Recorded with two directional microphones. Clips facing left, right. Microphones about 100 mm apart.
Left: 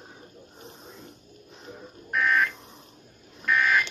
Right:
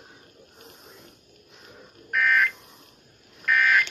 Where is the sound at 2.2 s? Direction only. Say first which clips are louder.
Right 1 dB; 35° left (ahead or behind).